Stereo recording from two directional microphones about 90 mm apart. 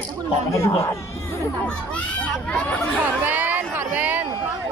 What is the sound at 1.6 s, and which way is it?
Speech, 15° left (ahead or behind).